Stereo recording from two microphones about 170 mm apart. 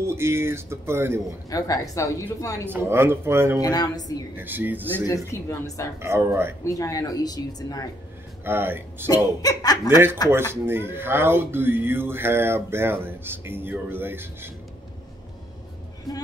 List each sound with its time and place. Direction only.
0.0 s speech: 15° right (ahead or behind)
1.5 s speech: 20° left (ahead or behind)
2.6 s speech: 15° right (ahead or behind)
3.6 s speech: 20° left (ahead or behind)
4.4 s speech: 10° right (ahead or behind)
5.0 s speech: 20° left (ahead or behind)
5.9 s speech: 15° right (ahead or behind)
6.6 s speech: 20° left (ahead or behind)
8.5 s speech: 15° right (ahead or behind)
9.1 s speech: 20° left (ahead or behind)
9.8 s speech: 15° right (ahead or behind)